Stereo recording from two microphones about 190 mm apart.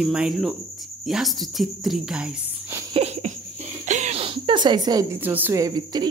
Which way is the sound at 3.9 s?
40° right (ahead or behind).